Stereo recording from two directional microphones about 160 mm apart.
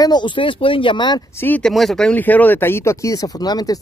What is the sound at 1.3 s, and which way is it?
Speech, 15° left (ahead or behind).